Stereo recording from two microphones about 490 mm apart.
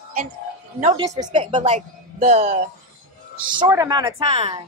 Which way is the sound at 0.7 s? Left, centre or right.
Centre.